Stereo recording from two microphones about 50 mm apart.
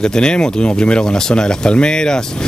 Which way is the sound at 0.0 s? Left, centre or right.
Centre.